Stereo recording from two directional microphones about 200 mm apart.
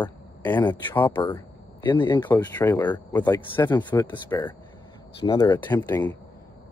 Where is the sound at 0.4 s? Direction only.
10° left (ahead or behind).